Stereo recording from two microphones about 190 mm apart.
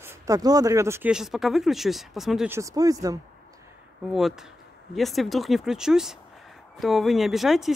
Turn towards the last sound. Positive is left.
turn(degrees=0)  # may be behind; listen again after turning